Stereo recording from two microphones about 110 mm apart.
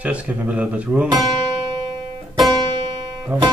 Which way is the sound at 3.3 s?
15° right (ahead or behind).